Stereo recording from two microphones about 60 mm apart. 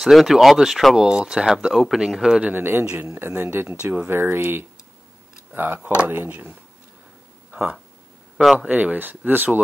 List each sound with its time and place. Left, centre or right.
0.0 s speech: centre
2.4 s speech: right
3.8 s speech: right
4.1 s speech: right
8.5 s speech: right